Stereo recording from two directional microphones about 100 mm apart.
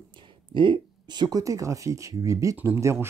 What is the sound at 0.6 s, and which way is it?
Speech, 50° right (ahead or behind).